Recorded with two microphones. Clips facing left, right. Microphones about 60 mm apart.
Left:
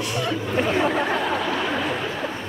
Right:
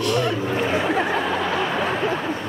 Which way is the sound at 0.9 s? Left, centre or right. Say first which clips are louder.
Right 1 dB; right.